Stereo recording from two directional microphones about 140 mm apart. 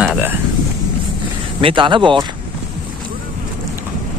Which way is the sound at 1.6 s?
35° right (ahead or behind).